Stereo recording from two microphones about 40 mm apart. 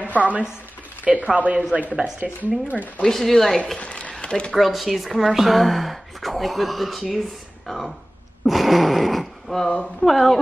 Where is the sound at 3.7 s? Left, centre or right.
Left.